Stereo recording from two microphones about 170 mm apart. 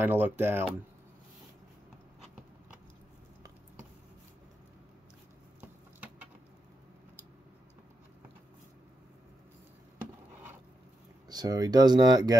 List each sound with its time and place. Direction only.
0.0 s speech: 10° right (ahead or behind)
11.2 s speech: 25° right (ahead or behind)